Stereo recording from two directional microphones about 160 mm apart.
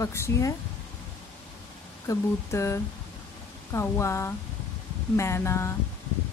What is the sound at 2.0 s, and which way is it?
Speech, 20° left (ahead or behind).